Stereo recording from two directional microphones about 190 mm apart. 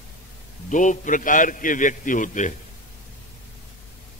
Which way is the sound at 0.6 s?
40° left (ahead or behind).